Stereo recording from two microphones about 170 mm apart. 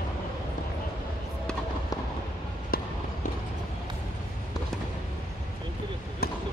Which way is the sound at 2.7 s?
60° left (ahead or behind).